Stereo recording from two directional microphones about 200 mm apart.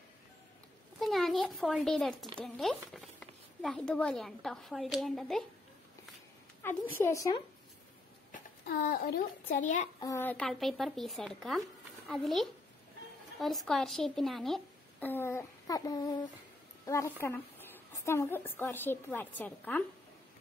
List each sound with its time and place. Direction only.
0.9 s a sound: centre (ahead or behind)
2.3 s speech: centre (ahead or behind)
6.6 s a woman's voice: 10° left (ahead or behind)
8.3 s a child's voice: 50° left (ahead or behind)
9.9 s a woman's voice: 15° left (ahead or behind)